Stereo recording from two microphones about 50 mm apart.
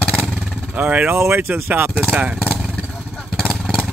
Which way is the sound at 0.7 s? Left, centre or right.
Right.